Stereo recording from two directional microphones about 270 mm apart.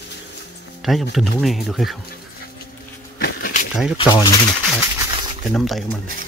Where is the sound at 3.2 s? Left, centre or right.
Left.